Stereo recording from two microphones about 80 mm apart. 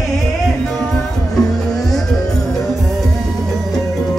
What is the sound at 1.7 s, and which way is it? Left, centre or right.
Music, centre.